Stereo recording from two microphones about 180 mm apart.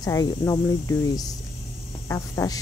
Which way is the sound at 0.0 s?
20° left (ahead or behind).